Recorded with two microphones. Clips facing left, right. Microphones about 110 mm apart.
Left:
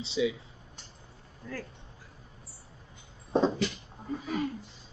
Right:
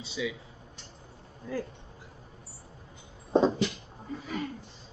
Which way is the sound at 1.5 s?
20° right (ahead or behind).